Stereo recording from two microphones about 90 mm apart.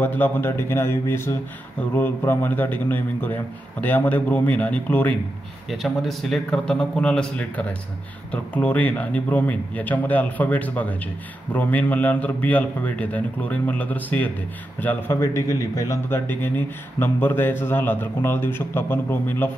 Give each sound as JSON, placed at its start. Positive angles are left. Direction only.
{"t": 0.0, "sound": "speech", "side_deg": 25}
{"t": 5.7, "sound": "a man's voice", "side_deg": 0}
{"t": 15.1, "sound": "a man's voice", "side_deg": 35}
{"t": 16.1, "sound": "speech", "side_deg": 25}